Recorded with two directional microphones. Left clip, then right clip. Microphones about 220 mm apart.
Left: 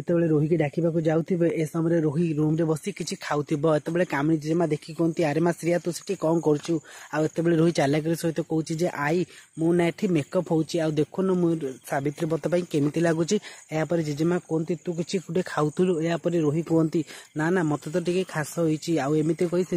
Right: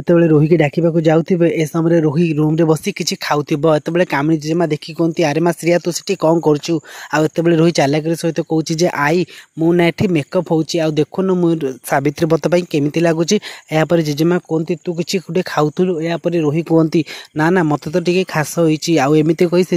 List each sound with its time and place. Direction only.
0.0 s speech: 45° right (ahead or behind)